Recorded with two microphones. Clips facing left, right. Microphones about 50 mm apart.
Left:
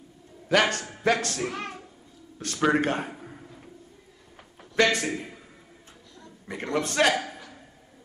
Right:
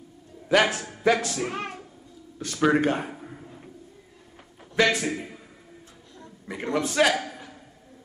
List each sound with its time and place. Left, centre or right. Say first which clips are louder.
0.5 s a man's voice: right 1 dB; centre
1.5 s a woman's voice: right 2 dB; right
2.3 s a man's voice: right 2 dB; centre
3.4 s a sound: right 2 dB; centre
4.7 s a man's voice: even; centre
6.4 s a man's voice: right 1 dB; centre